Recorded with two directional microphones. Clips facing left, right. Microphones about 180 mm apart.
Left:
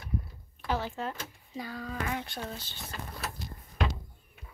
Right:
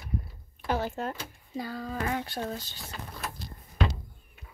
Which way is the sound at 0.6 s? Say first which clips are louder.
Right 3 dB; 45° right (ahead or behind).